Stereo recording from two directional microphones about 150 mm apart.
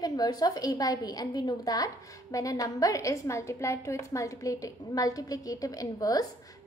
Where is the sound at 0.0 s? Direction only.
25° left (ahead or behind).